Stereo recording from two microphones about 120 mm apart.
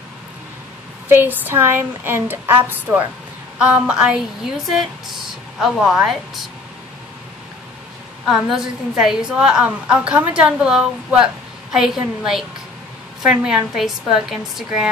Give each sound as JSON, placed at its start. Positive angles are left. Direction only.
{"t": 1.0, "sound": "a woman's voice", "side_deg": -15}
{"t": 8.3, "sound": "a woman's voice", "side_deg": -5}